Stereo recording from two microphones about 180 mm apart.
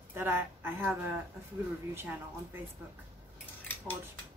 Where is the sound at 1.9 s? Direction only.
10° right (ahead or behind).